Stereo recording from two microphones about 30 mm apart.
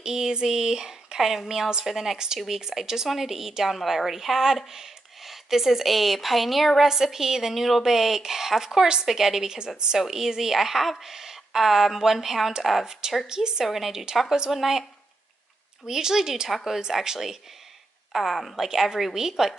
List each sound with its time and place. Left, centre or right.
0.0 s a woman's voice: right
2.1 s a woman's voice: right; by 6.7 s centre
6.9 s a woman's voice: centre
9.0 s a woman's voice: centre
13.3 s speech: right
13.7 s a woman's voice: centre
15.8 s a woman's voice: centre
18.1 s speech: centre
18.6 s a woman's voice: centre